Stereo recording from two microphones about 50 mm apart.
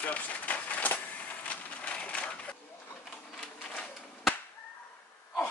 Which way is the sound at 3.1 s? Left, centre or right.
Centre.